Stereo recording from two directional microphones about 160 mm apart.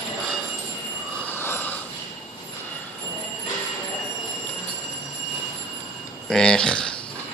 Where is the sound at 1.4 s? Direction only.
15° left (ahead or behind).